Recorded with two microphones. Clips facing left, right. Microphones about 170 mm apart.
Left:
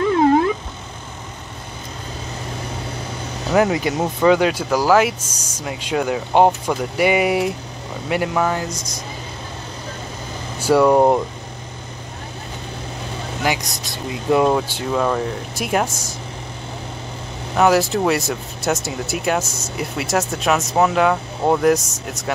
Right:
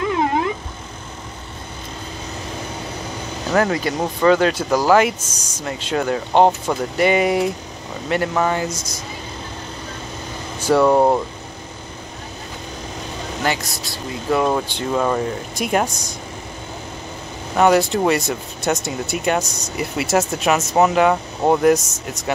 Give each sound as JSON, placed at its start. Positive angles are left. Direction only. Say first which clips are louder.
{"t": 3.5, "sound": "speech", "louder": "left 2 dB", "side_deg": 15}
{"t": 10.6, "sound": "speech", "louder": "left 1 dB", "side_deg": 10}
{"t": 13.4, "sound": "speech", "louder": "left 1 dB", "side_deg": 15}
{"t": 14.5, "sound": "speech", "louder": "left 1 dB", "side_deg": 5}
{"t": 17.6, "sound": "speech", "louder": "right 1 dB", "side_deg": 0}